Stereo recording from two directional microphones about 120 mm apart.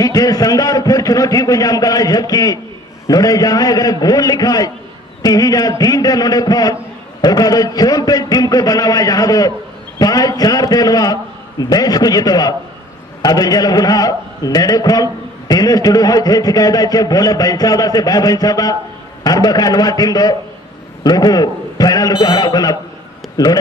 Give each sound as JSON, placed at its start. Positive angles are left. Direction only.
{"t": 0.0, "sound": "a man's voice", "side_deg": 30}